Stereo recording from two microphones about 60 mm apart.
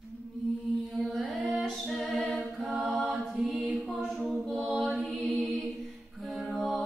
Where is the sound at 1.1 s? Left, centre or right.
Centre.